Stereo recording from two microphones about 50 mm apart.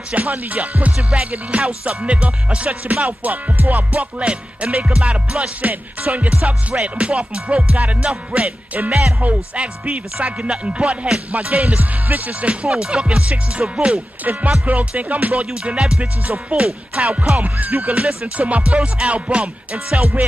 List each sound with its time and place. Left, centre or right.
0.1 s music: right
0.9 s music: right
14.2 s music: right
15.5 s music: centre